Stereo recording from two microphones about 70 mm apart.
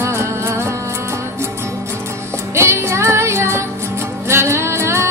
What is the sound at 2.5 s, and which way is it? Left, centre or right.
Music, right.